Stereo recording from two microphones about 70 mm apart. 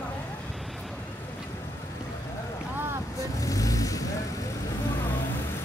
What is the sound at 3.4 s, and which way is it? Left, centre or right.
Vehicle, left.